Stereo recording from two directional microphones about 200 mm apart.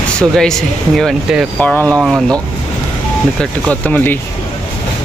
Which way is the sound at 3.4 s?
5° left (ahead or behind).